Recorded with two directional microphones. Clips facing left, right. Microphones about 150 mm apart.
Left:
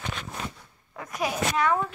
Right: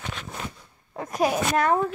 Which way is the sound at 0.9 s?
35° right (ahead or behind).